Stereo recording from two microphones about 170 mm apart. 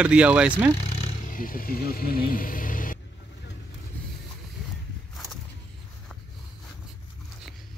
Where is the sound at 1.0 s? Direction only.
50° left (ahead or behind).